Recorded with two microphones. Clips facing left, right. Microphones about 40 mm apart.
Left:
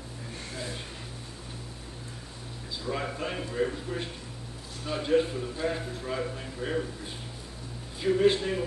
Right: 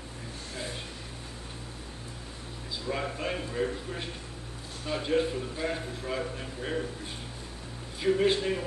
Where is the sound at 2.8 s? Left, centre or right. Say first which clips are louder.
Even; centre.